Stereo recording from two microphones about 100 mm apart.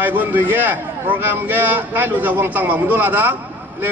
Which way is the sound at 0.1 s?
20° right (ahead or behind).